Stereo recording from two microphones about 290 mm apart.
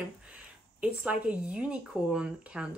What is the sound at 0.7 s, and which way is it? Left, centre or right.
A woman's voice, centre.